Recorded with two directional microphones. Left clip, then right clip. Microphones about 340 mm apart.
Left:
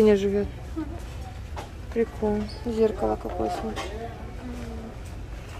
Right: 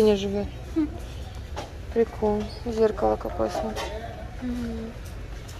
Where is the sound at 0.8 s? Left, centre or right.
Right.